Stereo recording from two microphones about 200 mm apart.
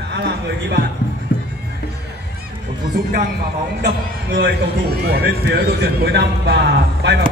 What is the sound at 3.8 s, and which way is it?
A man's voice, 55° right (ahead or behind).